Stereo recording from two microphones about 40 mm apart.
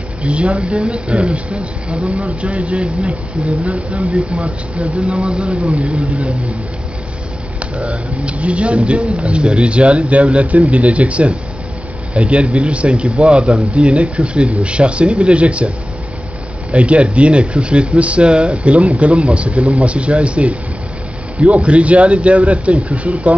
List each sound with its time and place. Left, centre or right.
0.2 s speech: right
0.7 s speech: right
4.4 s speech: right
7.7 s speech: right
16.7 s speech: right